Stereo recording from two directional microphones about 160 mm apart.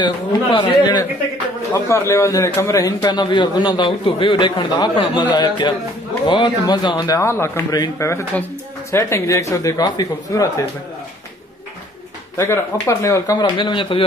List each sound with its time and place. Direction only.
0.0 s a man's voice: 30° left (ahead or behind)
12.4 s a man's voice: 15° left (ahead or behind); by 14.0 s 30° left (ahead or behind)